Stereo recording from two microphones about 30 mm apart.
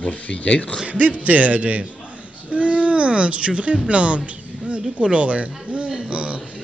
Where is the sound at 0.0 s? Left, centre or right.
Left.